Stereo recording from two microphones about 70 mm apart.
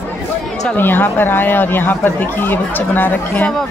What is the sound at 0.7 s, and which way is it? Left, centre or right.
A woman's voice, left.